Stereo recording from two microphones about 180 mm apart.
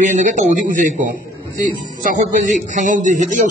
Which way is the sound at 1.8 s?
45° right (ahead or behind).